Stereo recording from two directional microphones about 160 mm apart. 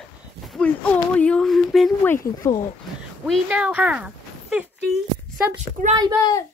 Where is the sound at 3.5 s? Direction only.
10° right (ahead or behind).